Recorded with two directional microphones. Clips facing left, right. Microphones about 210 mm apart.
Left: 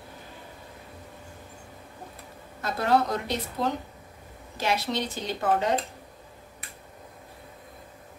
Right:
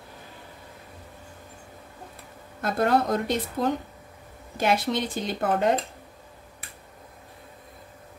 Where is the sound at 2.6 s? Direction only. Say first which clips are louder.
Right 2 dB; 55° right (ahead or behind).